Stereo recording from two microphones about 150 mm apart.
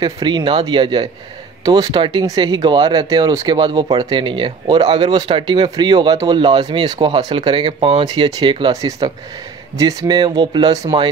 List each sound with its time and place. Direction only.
0.0 s speech: 30° right (ahead or behind)
8.0 s speech: 25° right (ahead or behind)